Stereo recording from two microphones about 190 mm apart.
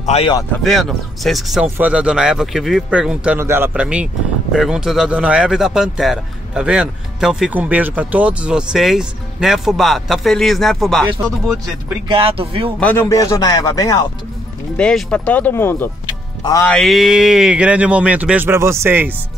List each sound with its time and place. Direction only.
0.0 s speech: 30° left (ahead or behind)
0.7 s speech: centre (ahead or behind)
12.1 s speech: 30° right (ahead or behind)
12.8 s speech: 10° left (ahead or behind)
14.8 s speech: 5° left (ahead or behind)
16.7 s speech: centre (ahead or behind)